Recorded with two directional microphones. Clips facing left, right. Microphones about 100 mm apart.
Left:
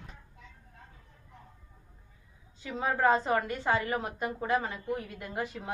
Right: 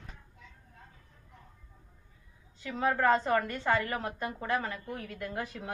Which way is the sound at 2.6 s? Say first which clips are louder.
Even; 15° left (ahead or behind).